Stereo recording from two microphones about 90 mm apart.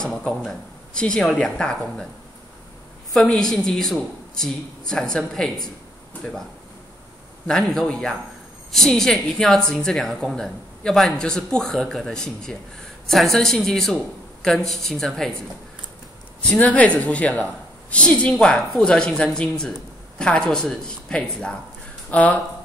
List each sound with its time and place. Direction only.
0.0 s a woman's voice: 5° left (ahead or behind)
3.1 s a woman's voice: 5° left (ahead or behind)
7.4 s a woman's voice: 5° left (ahead or behind)
16.3 s a woman's voice: 15° left (ahead or behind)